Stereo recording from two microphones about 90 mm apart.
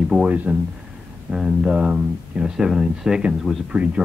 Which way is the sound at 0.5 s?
20° right (ahead or behind).